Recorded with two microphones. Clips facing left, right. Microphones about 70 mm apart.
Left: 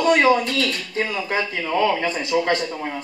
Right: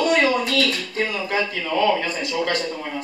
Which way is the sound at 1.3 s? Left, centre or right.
Left.